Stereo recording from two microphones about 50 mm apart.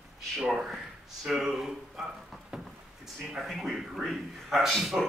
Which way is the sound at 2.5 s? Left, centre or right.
Centre.